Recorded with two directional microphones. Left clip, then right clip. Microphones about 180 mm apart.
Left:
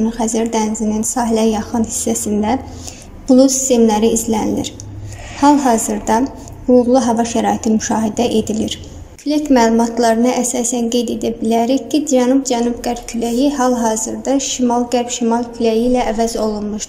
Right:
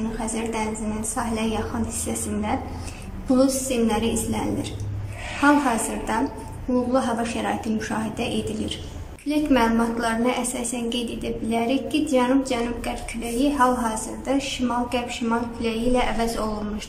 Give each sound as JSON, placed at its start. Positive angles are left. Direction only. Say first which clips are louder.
{"t": 0.2, "sound": "a woman's voice", "louder": "left 10 dB", "side_deg": 30}
{"t": 3.3, "sound": "a woman's voice", "louder": "left 10 dB", "side_deg": 30}